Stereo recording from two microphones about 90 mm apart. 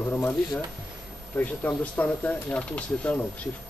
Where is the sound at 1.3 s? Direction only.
20° left (ahead or behind).